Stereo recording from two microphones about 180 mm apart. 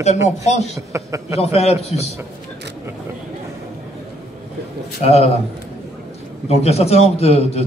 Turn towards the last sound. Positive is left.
turn(degrees=35)  # may be behind; listen again after turning